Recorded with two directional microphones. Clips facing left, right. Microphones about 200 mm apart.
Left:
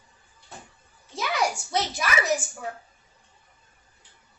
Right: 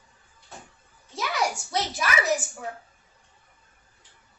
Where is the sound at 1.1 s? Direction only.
Centre (ahead or behind).